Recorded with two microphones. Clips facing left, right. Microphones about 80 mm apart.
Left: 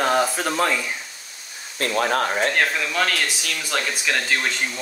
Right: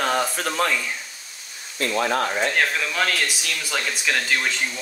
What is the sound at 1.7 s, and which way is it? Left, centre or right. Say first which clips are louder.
Speech: left 1 dB; left.